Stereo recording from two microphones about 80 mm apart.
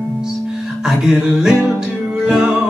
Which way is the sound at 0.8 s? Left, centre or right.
Centre.